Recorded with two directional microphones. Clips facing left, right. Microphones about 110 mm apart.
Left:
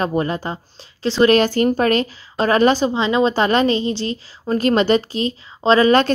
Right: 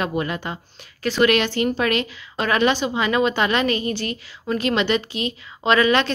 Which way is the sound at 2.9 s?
25° left (ahead or behind).